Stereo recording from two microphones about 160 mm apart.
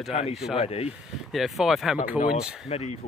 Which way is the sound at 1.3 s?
Centre (ahead or behind).